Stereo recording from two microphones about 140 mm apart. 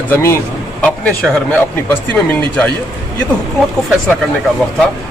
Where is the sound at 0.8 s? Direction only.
5° left (ahead or behind).